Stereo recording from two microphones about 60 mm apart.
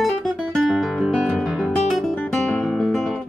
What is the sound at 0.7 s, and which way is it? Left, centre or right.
Music, centre.